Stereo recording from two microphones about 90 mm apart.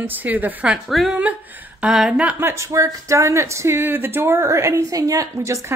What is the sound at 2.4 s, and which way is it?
Speech, 30° right (ahead or behind).